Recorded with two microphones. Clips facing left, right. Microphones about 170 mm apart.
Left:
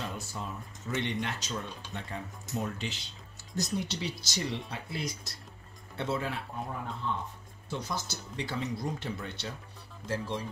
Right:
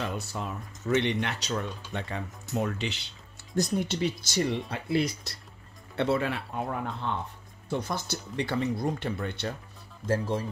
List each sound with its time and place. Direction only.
0.0 s speech: 70° right (ahead or behind)
3.5 s speech: 55° right (ahead or behind); by 7.2 s 70° right (ahead or behind)
7.7 s speech: 55° right (ahead or behind)